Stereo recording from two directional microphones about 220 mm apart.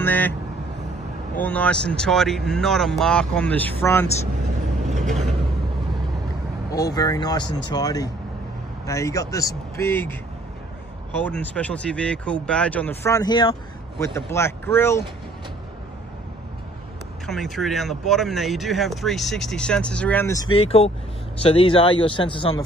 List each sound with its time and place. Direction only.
0.0 s vehicle: 10° left (ahead or behind)
1.4 s speech: 5° left (ahead or behind)
4.8 s vehicle: 30° right (ahead or behind)
6.7 s speech: 15° left (ahead or behind)
11.2 s speech: 5° left (ahead or behind)
17.3 s speech: centre (ahead or behind); by 22.6 s 25° left (ahead or behind)